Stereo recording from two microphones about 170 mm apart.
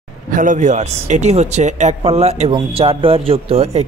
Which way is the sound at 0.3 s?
50° right (ahead or behind).